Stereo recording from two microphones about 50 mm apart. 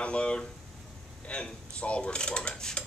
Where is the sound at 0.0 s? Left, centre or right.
Left.